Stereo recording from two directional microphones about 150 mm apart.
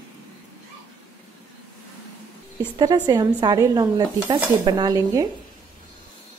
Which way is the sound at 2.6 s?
30° right (ahead or behind).